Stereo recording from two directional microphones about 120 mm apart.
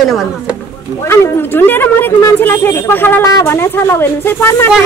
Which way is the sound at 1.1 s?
20° left (ahead or behind).